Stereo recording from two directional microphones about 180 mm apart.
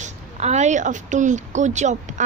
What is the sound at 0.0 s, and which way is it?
A woman's voice, 40° right (ahead or behind).